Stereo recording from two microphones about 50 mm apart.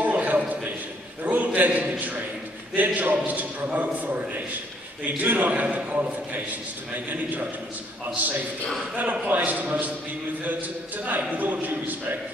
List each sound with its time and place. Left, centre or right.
0.0 s a sound: right
2.7 s a man's voice: right
9.1 s a man's voice: right
11.1 s a man's voice: right